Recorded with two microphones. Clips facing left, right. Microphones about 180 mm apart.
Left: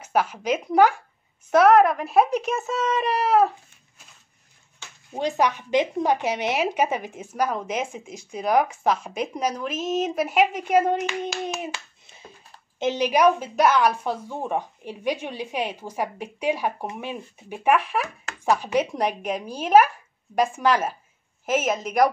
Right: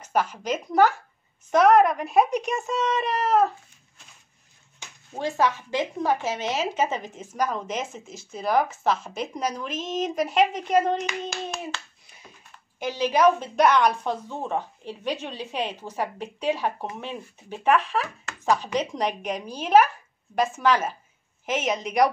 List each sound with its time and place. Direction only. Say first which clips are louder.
0.0 s a child's voice: left 2 dB; 10° left (ahead or behind)
4.8 s a sound: even; 15° right (ahead or behind)
5.1 s speech: left 1 dB; 15° left (ahead or behind)
11.6 s a child's voice: left 2 dB; 20° left (ahead or behind); by 22.1 s centre (ahead or behind)